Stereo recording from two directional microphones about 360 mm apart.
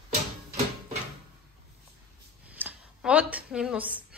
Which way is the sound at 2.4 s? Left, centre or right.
Centre.